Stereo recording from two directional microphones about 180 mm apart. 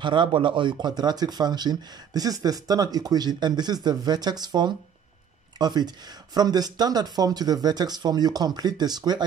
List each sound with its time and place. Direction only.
0.0 s speech: 25° right (ahead or behind)